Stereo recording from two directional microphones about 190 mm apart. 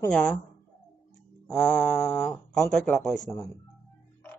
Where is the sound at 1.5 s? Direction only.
5° left (ahead or behind).